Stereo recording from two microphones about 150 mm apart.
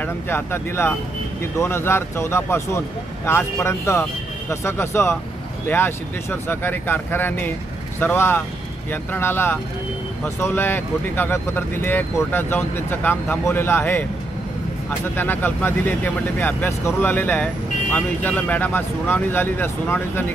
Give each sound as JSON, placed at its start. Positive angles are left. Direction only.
{"t": 0.0, "sound": "speech", "side_deg": 15}